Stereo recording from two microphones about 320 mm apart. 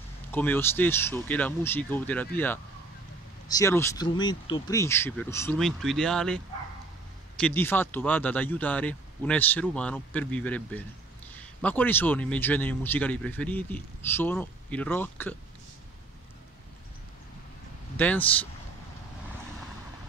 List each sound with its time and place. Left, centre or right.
0.3 s a man's voice: centre
17.9 s a man's voice: centre